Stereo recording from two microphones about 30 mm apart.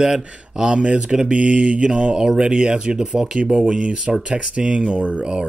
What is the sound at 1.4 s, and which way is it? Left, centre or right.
Speech, right.